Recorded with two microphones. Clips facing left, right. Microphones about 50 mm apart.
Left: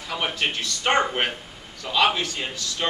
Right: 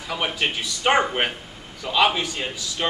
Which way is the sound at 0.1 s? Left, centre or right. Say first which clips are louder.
Right 1 dB; centre.